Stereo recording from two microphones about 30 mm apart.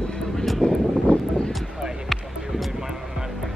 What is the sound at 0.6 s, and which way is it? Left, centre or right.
Vehicle, left.